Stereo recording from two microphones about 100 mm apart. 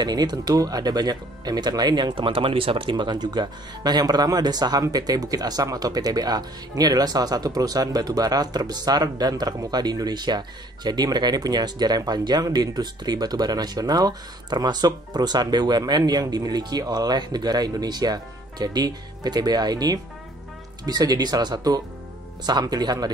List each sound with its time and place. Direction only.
0.0 s speech: 45° right (ahead or behind)
2.1 s speech: 60° right (ahead or behind); by 23.0 s 40° right (ahead or behind)